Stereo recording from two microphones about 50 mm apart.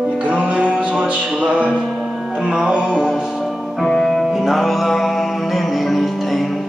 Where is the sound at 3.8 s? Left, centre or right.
Centre.